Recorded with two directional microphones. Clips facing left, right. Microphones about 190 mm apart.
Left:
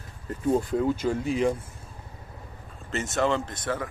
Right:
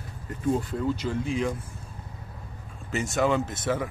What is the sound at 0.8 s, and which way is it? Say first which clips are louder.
Speech: left 3 dB; 45° left (ahead or behind).